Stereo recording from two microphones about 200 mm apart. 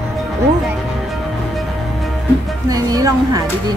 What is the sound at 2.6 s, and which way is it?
Music, 20° right (ahead or behind).